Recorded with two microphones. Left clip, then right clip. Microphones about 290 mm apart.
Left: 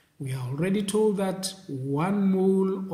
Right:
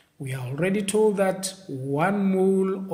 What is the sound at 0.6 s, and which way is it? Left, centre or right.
Speech, centre.